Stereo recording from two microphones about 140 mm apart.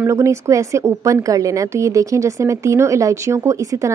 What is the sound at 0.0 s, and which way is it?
A woman's voice, 20° right (ahead or behind).